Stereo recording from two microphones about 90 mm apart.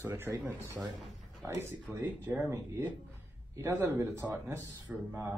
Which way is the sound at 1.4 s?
25° right (ahead or behind).